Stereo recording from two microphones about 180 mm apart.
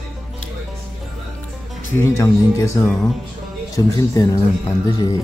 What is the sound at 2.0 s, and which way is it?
Speech, 15° left (ahead or behind).